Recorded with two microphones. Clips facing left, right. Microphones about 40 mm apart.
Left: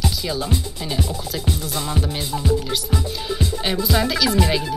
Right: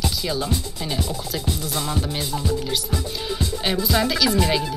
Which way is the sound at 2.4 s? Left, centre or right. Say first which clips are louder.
Left 2 dB; centre.